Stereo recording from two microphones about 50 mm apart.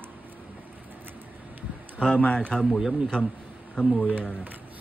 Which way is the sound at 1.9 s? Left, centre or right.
Left.